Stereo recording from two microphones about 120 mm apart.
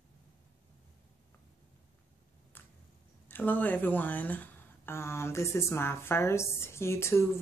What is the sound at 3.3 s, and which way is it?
Speech, 15° left (ahead or behind).